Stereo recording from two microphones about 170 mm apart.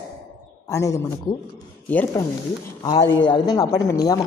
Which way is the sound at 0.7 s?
15° left (ahead or behind).